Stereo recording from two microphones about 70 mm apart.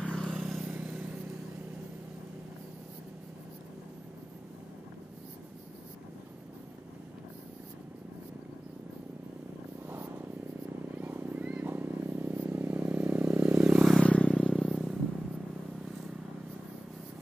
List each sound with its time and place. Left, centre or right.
0.0 s vehicle: centre
9.8 s purr: right
10.9 s vehicle: right
13.6 s vehicle: centre
13.9 s vehicle: centre
14.6 s vehicle: centre